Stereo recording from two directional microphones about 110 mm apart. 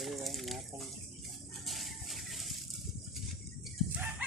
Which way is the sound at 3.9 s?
15° right (ahead or behind).